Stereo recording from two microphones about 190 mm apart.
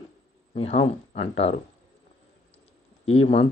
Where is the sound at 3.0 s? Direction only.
30° left (ahead or behind).